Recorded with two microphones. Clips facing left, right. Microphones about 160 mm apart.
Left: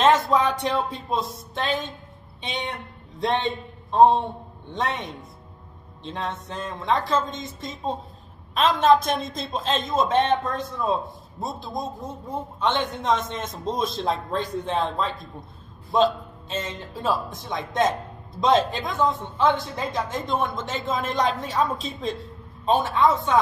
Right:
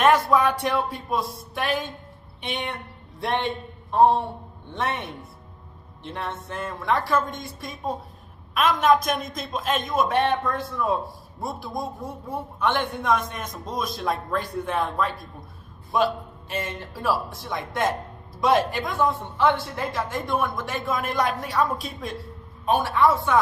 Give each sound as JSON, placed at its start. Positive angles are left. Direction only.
{"t": 0.0, "sound": "music", "side_deg": 20}
{"t": 1.1, "sound": "a woman's voice", "side_deg": 25}